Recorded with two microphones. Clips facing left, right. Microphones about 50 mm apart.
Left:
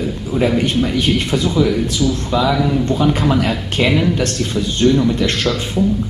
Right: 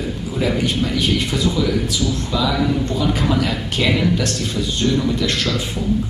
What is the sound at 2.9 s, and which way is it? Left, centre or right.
Speech, left.